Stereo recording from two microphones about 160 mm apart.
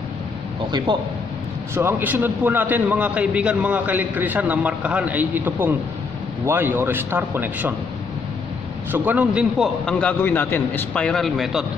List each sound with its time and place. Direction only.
0.7 s speech: 25° right (ahead or behind)
1.8 s a man's voice: 10° right (ahead or behind)
8.9 s a man's voice: 10° right (ahead or behind)
9.8 s a man's voice: 5° left (ahead or behind)